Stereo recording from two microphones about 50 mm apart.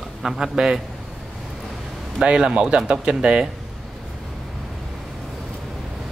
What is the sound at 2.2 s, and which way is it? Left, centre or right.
Speech, centre.